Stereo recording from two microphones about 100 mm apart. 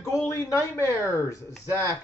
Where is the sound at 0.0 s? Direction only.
30° left (ahead or behind).